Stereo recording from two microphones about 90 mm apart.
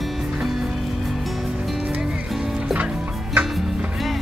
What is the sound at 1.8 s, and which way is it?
Music, 10° right (ahead or behind).